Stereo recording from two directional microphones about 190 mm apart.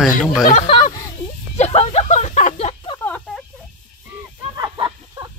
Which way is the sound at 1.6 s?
35° left (ahead or behind).